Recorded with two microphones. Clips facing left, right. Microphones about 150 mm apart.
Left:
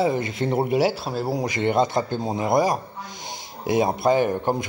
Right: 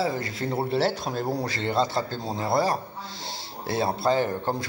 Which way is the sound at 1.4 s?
15° left (ahead or behind).